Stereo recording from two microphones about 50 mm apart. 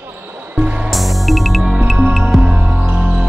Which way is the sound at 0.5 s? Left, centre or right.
Right.